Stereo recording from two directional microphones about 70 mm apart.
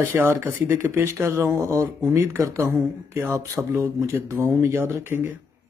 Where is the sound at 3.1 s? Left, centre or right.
Right.